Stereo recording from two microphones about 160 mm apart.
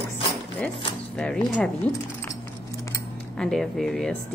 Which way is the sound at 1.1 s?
5° left (ahead or behind).